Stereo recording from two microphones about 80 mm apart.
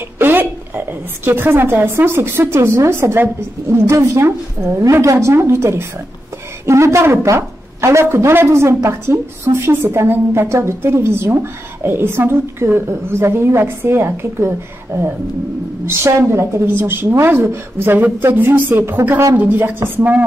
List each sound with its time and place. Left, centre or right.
0.2 s a woman's voice: right
15.8 s a woman's voice: right